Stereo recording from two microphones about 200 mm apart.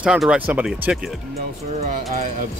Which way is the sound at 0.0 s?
5° right (ahead or behind).